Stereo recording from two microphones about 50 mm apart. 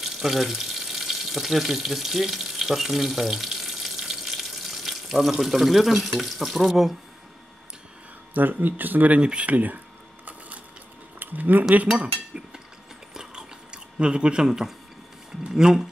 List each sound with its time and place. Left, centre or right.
0.0 s water: centre
5.3 s speech: centre
8.3 s speech: right
9.2 s speech: right
11.1 s a sound: right
12.0 s chink: right
13.1 s chewing: centre
15.4 s speech: centre